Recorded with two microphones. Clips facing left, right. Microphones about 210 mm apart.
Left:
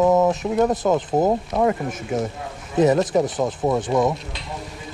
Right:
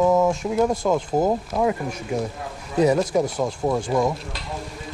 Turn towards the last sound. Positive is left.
turn(degrees=5)  # may be behind; listen again after turning